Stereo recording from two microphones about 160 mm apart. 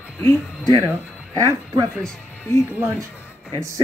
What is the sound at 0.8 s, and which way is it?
Speech, 20° right (ahead or behind).